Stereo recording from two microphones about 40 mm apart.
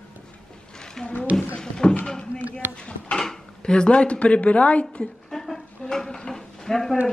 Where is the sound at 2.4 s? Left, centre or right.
Right.